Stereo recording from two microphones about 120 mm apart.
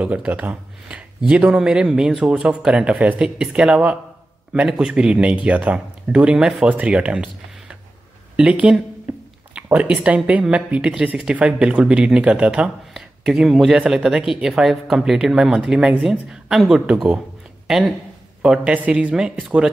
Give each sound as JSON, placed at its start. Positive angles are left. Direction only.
{"t": 0.0, "sound": "speech", "side_deg": -10}
{"t": 8.4, "sound": "speech", "side_deg": -10}